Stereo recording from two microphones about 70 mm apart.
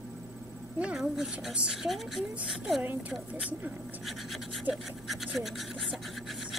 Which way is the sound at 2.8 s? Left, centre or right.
Right.